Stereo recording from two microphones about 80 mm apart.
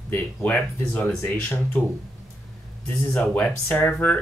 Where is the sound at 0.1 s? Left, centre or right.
Centre.